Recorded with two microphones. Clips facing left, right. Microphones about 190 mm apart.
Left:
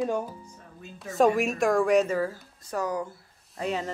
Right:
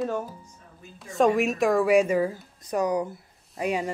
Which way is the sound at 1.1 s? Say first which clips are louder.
Right 1 dB; centre (ahead or behind).